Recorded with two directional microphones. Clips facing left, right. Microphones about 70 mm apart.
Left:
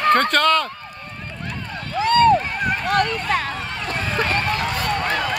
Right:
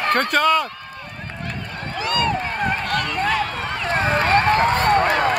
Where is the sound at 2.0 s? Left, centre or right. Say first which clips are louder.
Left 7 dB; left.